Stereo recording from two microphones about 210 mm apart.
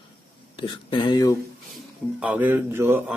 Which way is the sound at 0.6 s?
20° left (ahead or behind).